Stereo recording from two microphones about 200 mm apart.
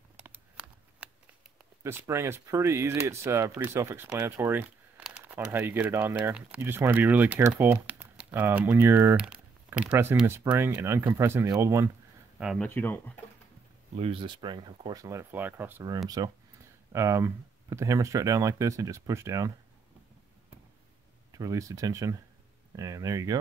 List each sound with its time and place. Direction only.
0.2 s a sound: 5° right (ahead or behind)
1.8 s speech: 10° right (ahead or behind)
12.4 s speech: centre (ahead or behind)
13.9 s speech: 30° right (ahead or behind)
21.3 s speech: 15° right (ahead or behind)